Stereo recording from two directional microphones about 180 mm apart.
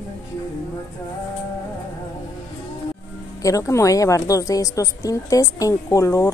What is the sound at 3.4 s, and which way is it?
A woman's voice, 15° left (ahead or behind).